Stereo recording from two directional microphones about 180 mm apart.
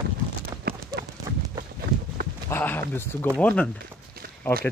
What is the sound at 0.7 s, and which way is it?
Clip-clop, 55° right (ahead or behind).